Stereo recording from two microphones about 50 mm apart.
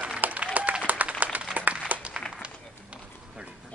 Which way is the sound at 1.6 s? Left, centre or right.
Right.